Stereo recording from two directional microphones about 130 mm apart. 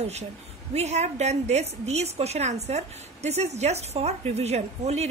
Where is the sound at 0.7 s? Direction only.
55° right (ahead or behind).